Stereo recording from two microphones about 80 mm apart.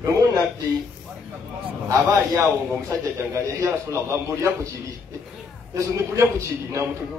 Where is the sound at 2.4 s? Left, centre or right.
Right.